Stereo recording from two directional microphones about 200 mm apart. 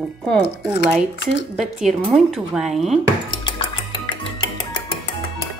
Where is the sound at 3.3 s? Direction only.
25° left (ahead or behind).